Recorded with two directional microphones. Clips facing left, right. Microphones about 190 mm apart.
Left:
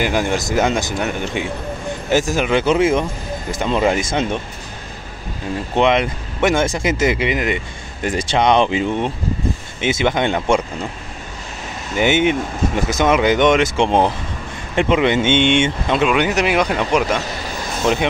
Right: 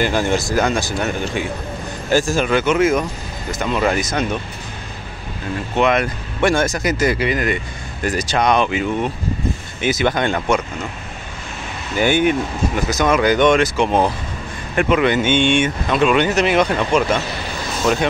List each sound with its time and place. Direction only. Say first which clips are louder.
0.0 s speech: right 1 dB; 15° left (ahead or behind)
2.6 s speech: left 1 dB; 30° left (ahead or behind)
5.8 s speech: left 1 dB; 20° left (ahead or behind)
11.9 s speech: even; 20° left (ahead or behind)
16.0 s speech: right 2 dB; 10° left (ahead or behind)